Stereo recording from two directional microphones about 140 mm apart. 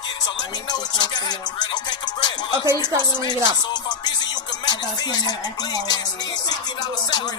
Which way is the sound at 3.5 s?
30° left (ahead or behind).